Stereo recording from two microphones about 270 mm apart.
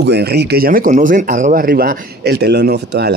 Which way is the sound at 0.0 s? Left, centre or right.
Right.